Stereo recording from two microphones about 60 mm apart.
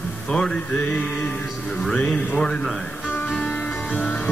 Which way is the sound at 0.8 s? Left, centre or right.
Left.